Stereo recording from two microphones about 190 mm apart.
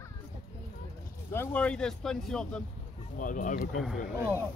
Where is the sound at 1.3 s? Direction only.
10° left (ahead or behind).